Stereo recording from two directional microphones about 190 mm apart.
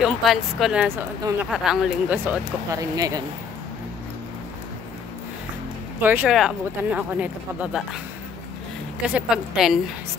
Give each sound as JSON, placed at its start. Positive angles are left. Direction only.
{"t": 0.0, "sound": "speech", "side_deg": 0}
{"t": 2.2, "sound": "speech", "side_deg": -15}
{"t": 5.9, "sound": "speech", "side_deg": -10}
{"t": 9.1, "sound": "speech", "side_deg": 0}